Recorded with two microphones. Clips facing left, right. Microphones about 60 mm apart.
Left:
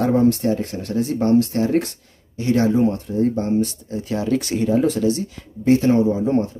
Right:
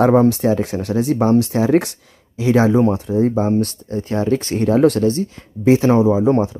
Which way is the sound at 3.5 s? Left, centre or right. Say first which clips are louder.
Right 2 dB; right.